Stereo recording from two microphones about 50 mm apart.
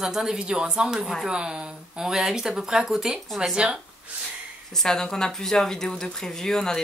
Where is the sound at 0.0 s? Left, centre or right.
Centre.